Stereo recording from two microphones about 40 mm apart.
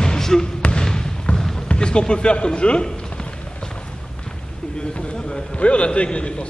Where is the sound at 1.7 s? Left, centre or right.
Left.